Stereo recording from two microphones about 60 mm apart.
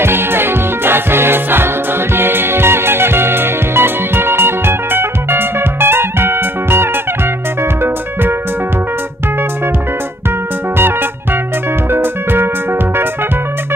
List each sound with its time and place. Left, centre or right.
0.0 s music: right
10.8 s music: right